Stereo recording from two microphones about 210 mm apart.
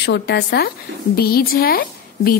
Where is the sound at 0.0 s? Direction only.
55° left (ahead or behind).